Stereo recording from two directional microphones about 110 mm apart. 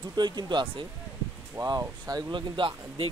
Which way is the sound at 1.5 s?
30° right (ahead or behind).